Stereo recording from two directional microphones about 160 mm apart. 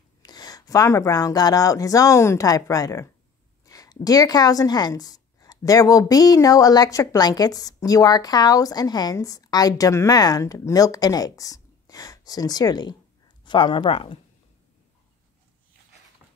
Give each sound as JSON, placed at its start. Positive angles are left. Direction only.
{"t": 0.2, "sound": "a woman's voice", "side_deg": 25}